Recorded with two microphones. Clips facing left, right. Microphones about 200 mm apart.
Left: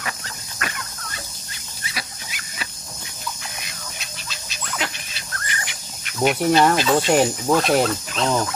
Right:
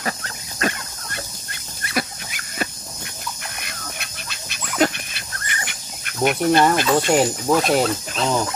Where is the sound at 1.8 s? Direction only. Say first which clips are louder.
Right 9 dB; 50° right (ahead or behind).